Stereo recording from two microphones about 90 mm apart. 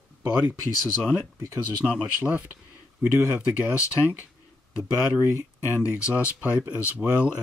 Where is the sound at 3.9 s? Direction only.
20° right (ahead or behind).